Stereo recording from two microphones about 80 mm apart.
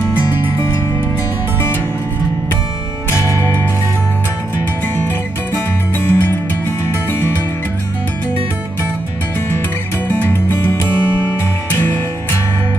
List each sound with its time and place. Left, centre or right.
3.1 s music: left
6.0 s music: left
10.0 s music: left